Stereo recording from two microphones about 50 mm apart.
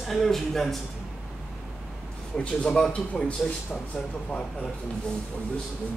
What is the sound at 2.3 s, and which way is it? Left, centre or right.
Speech, left.